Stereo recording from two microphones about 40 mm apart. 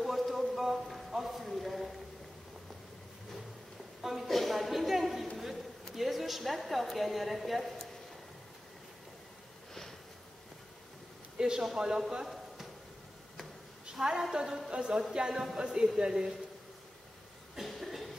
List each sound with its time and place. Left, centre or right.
0.0 s a sound: centre
4.0 s a sound: centre
5.9 s a woman's voice: centre
11.3 s a sound: centre
11.7 s a man's voice: centre
14.0 s a man's voice: centre
14.7 s a capella: centre
15.5 s a man's voice: centre
17.6 s cough: centre